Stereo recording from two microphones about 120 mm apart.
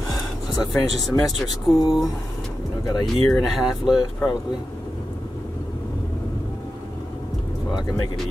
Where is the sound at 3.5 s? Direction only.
5° right (ahead or behind).